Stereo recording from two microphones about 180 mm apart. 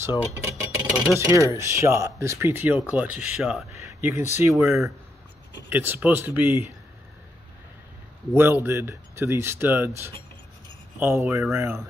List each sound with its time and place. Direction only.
0.4 s a sound: 15° right (ahead or behind)
1.1 s speech: 15° right (ahead or behind)
3.7 s speech: 15° right (ahead or behind)
8.4 s speech: 10° right (ahead or behind)